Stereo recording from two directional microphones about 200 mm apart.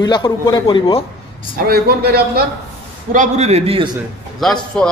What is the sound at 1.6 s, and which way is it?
Speech, 50° right (ahead or behind).